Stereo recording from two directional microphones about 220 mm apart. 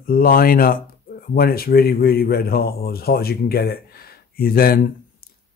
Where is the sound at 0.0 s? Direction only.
40° left (ahead or behind).